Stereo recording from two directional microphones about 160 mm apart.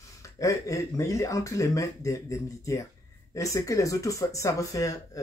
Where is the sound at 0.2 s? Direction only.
20° left (ahead or behind).